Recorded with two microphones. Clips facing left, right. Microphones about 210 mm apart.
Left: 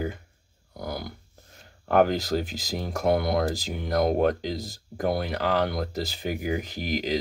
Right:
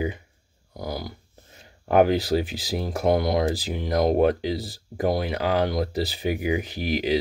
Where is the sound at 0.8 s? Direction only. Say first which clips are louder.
Right 2 dB; 55° left (ahead or behind).